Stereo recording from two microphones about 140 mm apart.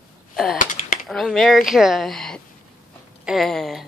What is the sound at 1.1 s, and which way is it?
Speech, centre (ahead or behind).